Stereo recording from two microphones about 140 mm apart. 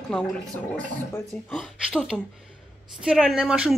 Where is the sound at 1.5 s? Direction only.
Centre (ahead or behind).